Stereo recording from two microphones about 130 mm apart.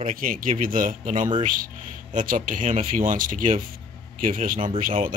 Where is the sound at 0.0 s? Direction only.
90° right.